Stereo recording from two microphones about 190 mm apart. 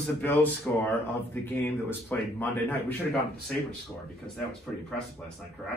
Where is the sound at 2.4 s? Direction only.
10° left (ahead or behind).